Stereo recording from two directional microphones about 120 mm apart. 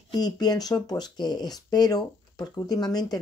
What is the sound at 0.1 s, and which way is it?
Speech, 35° left (ahead or behind).